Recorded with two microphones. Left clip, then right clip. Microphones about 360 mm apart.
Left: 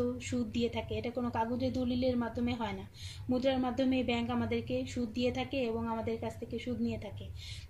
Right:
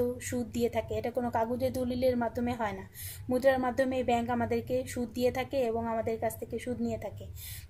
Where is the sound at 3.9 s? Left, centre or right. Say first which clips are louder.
Right 4 dB; right.